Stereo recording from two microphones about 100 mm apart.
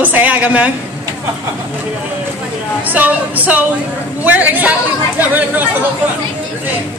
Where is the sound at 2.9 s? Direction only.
15° right (ahead or behind).